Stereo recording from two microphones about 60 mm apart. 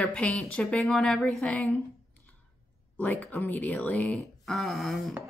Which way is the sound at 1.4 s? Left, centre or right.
Left.